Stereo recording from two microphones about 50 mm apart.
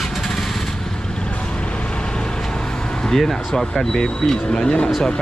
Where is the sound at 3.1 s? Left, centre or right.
Centre.